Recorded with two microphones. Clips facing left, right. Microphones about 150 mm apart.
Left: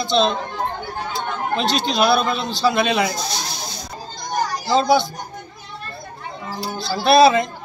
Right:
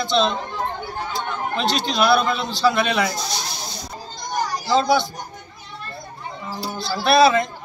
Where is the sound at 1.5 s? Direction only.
30° left (ahead or behind).